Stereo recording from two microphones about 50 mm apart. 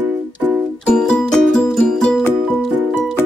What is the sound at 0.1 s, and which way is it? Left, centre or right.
Music, right.